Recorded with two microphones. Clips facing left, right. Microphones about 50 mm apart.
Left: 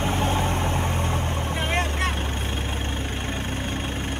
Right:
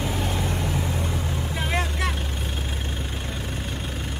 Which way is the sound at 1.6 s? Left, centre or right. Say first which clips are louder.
Left 1 dB; left.